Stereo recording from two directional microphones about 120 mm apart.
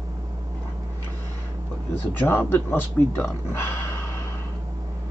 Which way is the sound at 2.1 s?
20° left (ahead or behind).